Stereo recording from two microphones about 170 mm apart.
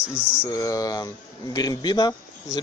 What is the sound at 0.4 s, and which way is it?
A man's voice, 20° left (ahead or behind).